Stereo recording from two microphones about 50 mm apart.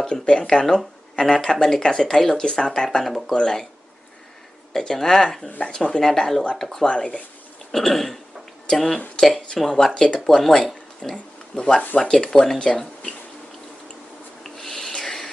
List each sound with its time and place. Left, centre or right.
0.2 s speech: centre
3.0 s throat clearing: centre
3.3 s speech: centre
4.7 s speech: centre
6.9 s speech: centre
7.7 s throat clearing: centre
8.6 s speech: centre
9.1 s throat clearing: centre
9.8 s speech: centre
11.5 s speech: centre
14.4 s rub: centre